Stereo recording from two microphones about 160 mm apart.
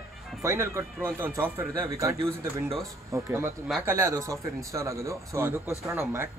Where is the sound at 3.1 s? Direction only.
15° right (ahead or behind).